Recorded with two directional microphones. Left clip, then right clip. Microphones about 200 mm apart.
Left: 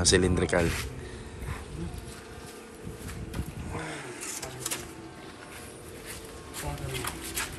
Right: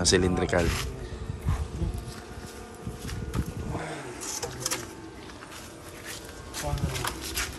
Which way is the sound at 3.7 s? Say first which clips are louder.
Right 1 dB; 25° right (ahead or behind).